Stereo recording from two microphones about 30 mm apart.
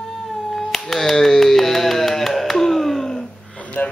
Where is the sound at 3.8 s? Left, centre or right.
Left.